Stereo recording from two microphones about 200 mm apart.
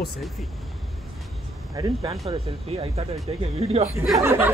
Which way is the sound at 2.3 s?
30° right (ahead or behind).